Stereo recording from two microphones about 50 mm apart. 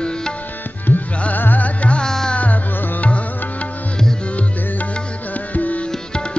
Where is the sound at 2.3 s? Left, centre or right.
Left.